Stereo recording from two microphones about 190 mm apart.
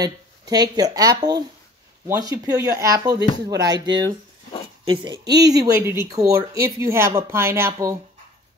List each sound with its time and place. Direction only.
0.0 s speech: 20° right (ahead or behind)